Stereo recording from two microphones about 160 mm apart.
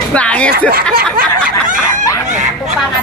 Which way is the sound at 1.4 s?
55° right (ahead or behind).